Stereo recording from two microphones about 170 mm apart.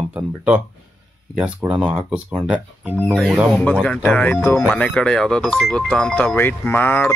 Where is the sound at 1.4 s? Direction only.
10° right (ahead or behind).